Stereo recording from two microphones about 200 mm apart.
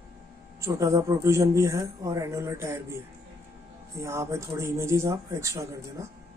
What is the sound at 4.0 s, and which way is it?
Speech, 15° right (ahead or behind).